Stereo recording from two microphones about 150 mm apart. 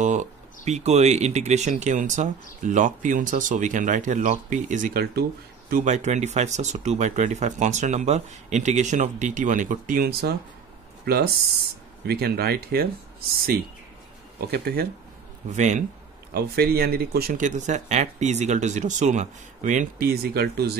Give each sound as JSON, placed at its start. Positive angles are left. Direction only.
{"t": 0.0, "sound": "speech", "side_deg": -55}
{"t": 5.7, "sound": "speech", "side_deg": -60}
{"t": 14.5, "sound": "speech", "side_deg": -90}
{"t": 15.5, "sound": "speech", "side_deg": -50}
{"t": 16.3, "sound": "speech", "side_deg": -90}
{"t": 17.4, "sound": "speech", "side_deg": -55}